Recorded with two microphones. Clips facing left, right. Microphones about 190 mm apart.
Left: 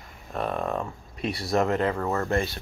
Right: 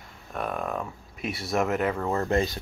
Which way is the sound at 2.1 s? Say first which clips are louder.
Right 1 dB; 20° right (ahead or behind).